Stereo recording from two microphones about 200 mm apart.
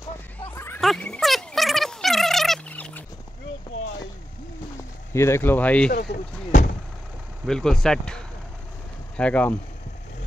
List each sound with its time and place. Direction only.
0.7 s a sound: 5° left (ahead or behind)
4.7 s speech: 15° left (ahead or behind)
5.9 s speech: 55° left (ahead or behind)
7.4 s speech: 5° left (ahead or behind)